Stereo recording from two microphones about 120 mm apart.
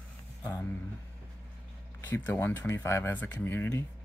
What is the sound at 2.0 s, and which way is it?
Speech, 15° left (ahead or behind).